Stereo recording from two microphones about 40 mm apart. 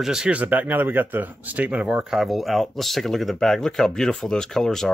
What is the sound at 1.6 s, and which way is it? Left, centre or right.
Speech, right.